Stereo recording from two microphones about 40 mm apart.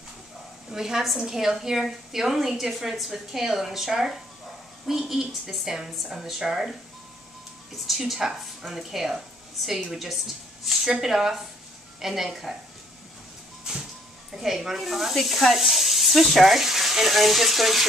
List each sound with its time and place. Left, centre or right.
0.7 s a woman's voice: centre
7.7 s a woman's voice: centre
13.7 s vehicle: centre
14.3 s speech: centre